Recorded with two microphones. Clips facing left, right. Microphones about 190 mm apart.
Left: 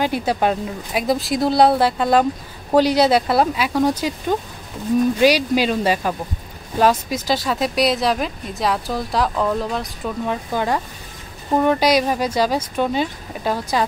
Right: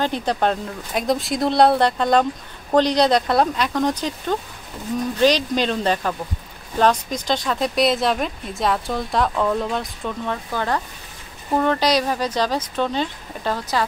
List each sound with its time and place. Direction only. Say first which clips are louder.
0.0 s speech: left 2 dB; 10° left (ahead or behind)
10.2 s speech: left 4 dB; 15° left (ahead or behind)